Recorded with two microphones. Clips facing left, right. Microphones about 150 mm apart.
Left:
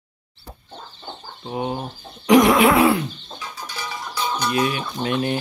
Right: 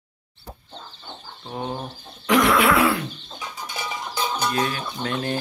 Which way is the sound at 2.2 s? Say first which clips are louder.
Left 5 dB; 15° left (ahead or behind).